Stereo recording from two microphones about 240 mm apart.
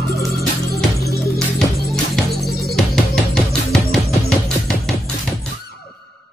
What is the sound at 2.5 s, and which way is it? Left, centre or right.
Music, left.